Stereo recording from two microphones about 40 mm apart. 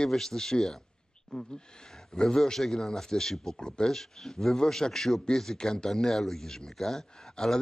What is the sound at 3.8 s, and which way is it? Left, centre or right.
A man's voice, centre.